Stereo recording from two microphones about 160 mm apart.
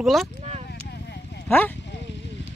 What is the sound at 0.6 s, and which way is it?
Clip-clop, 90° left.